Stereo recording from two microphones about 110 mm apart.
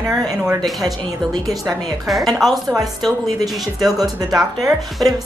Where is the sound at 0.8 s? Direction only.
35° right (ahead or behind).